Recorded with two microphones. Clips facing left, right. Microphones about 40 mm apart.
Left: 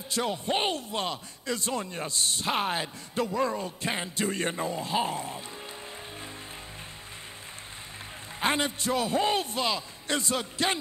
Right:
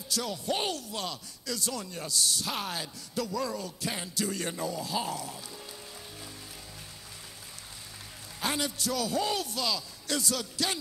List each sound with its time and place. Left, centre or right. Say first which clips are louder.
0.1 s speech: left 3 dB; left
8.4 s speech: left 4 dB; left